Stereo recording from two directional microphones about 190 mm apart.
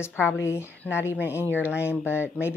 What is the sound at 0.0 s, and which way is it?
Speech, 10° left (ahead or behind).